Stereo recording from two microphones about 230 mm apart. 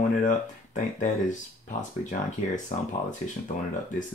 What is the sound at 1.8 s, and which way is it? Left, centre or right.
Speech, left.